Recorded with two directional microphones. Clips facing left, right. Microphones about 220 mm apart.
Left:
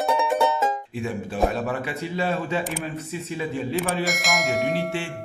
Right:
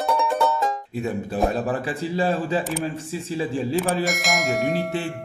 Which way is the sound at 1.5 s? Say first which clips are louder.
Right 2 dB; 35° right (ahead or behind).